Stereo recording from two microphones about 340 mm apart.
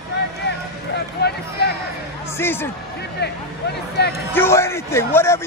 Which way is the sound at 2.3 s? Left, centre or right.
Centre.